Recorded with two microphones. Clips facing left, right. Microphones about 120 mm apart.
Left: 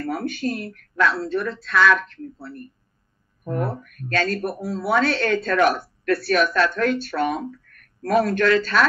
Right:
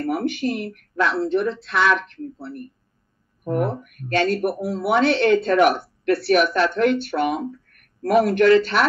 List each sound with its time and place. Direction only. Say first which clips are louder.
0.0 s speech: right 3 dB; 20° right (ahead or behind)